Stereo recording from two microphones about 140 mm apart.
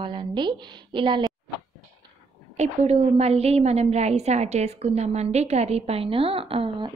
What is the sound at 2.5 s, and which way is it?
A woman's voice, 55° right (ahead or behind).